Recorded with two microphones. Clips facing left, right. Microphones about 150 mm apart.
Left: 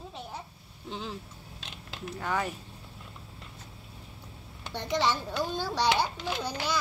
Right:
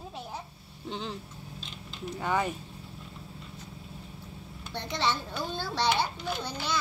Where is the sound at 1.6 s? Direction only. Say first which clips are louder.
Even; 90° left.